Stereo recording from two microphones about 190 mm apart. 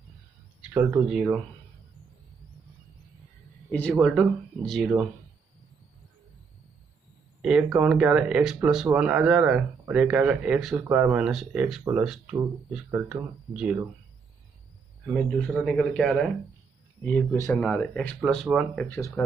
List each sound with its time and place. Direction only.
0.6 s speech: 10° right (ahead or behind)
3.9 s speech: centre (ahead or behind)
7.4 s speech: 5° right (ahead or behind)
15.5 s speech: 5° left (ahead or behind)
18.9 s speech: 15° left (ahead or behind)